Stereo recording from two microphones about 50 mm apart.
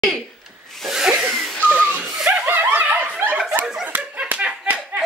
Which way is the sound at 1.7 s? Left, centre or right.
Right.